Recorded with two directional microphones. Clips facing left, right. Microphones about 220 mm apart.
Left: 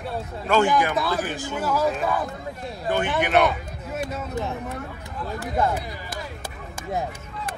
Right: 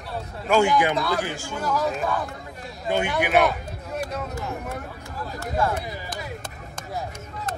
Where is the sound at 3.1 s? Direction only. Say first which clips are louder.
Left 1 dB; 5° right (ahead or behind).